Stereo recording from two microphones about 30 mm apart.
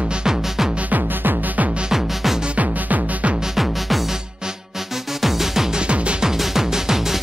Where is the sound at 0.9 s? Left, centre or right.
Right.